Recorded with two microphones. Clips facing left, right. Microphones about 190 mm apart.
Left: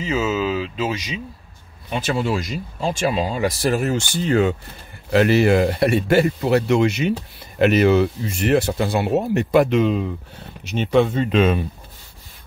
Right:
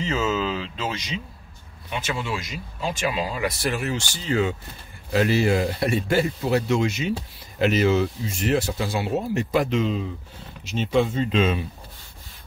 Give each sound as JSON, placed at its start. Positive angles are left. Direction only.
{"t": 0.0, "sound": "speech", "side_deg": 10}
{"t": 1.9, "sound": "speech", "side_deg": 35}
{"t": 3.7, "sound": "speech", "side_deg": 45}